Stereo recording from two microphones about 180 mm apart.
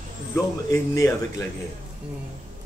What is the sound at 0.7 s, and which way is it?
Speech, 20° left (ahead or behind).